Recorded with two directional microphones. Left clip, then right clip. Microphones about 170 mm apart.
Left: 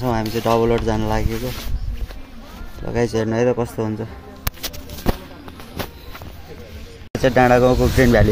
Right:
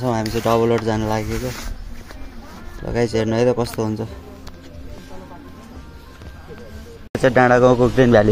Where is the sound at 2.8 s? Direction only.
5° right (ahead or behind).